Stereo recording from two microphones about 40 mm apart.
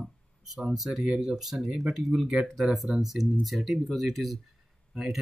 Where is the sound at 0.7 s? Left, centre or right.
Centre.